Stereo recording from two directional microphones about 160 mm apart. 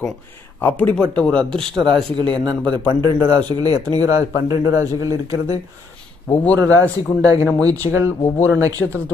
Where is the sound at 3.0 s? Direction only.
25° right (ahead or behind).